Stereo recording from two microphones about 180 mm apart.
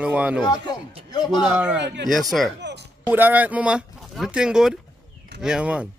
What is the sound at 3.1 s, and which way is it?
Speech, 10° right (ahead or behind).